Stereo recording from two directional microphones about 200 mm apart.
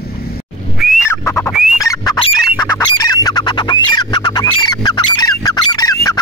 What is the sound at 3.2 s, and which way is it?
Music, 20° left (ahead or behind).